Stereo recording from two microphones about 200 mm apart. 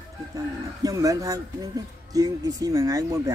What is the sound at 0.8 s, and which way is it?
Speech, 15° right (ahead or behind).